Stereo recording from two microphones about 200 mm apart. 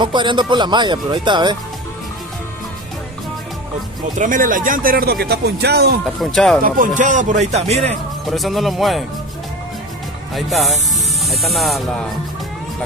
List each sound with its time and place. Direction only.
0.0 s speech: 25° right (ahead or behind)
4.2 s speech: 40° right (ahead or behind)
6.3 s speech: centre (ahead or behind)
6.6 s speech: 40° right (ahead or behind)
8.3 s speech: centre (ahead or behind)
10.3 s speech: centre (ahead or behind)